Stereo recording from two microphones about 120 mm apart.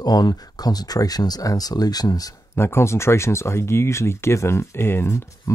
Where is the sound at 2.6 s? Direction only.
20° left (ahead or behind).